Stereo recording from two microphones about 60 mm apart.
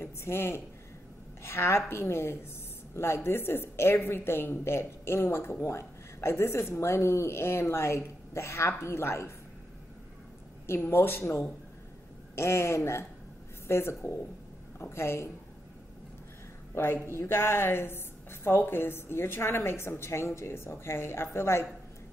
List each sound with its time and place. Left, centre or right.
0.0 s a woman's voice: left
10.7 s a woman's voice: left
16.7 s a woman's voice: left